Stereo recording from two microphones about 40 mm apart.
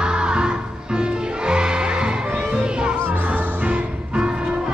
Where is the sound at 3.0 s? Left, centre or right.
Right.